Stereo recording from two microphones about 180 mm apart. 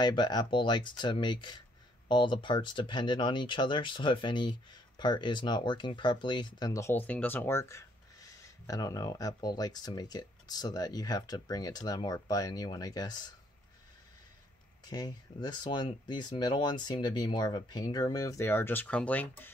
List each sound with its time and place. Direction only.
0.0 s speech: 25° left (ahead or behind)
14.9 s speech: 25° left (ahead or behind)